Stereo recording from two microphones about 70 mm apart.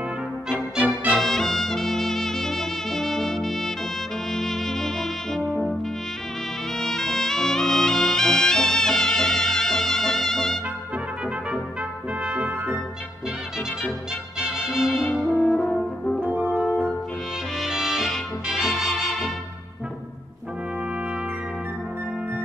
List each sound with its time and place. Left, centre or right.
0.5 s music: centre
1.1 s music: centre
4.3 s brass instrument: centre
6.8 s music: centre
12.3 s brass instrument: centre
14.7 s music: centre
15.1 s brass instrument: centre
15.6 s french horn: centre
16.2 s french horn: right
17.6 s music: centre